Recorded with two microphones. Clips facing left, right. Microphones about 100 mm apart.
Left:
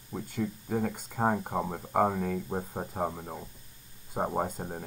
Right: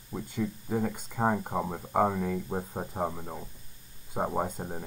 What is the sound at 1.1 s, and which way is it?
Speech, 5° left (ahead or behind).